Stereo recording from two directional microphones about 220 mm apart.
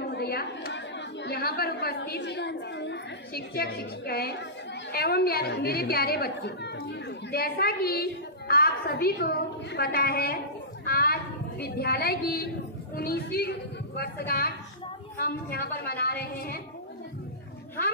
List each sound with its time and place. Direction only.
0.1 s a woman's voice: 45° left (ahead or behind)